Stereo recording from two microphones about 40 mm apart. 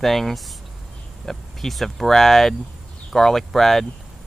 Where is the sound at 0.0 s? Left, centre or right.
Centre.